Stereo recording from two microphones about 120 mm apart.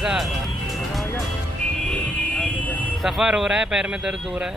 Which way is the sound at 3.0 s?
5° right (ahead or behind).